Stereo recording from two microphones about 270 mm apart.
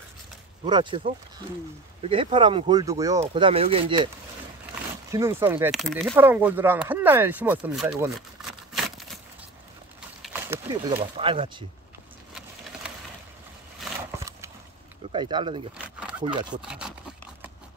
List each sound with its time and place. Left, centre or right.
0.7 s speech: centre
2.0 s speech: centre
5.1 s speech: centre
10.2 s speech: centre
13.8 s a sound: centre
15.1 s speech: centre
16.0 s a sound: centre